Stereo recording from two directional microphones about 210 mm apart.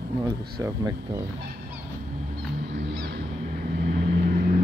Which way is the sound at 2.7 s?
50° right (ahead or behind).